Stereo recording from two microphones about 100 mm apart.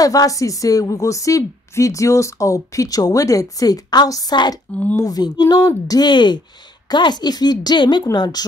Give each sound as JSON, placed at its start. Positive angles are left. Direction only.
{"t": 0.0, "sound": "a woman's voice", "side_deg": 35}